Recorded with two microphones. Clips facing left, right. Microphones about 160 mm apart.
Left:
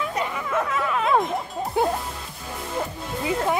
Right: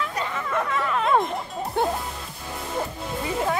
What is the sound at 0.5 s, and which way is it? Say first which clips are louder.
Music: even; 5° left (ahead or behind).